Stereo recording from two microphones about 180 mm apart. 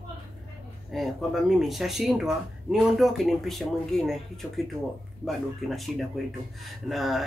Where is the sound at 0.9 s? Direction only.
Centre (ahead or behind).